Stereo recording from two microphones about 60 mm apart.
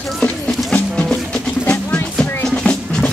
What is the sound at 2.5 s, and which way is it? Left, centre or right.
Music, centre.